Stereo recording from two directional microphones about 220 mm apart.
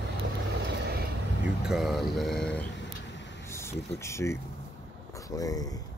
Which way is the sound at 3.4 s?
10° left (ahead or behind).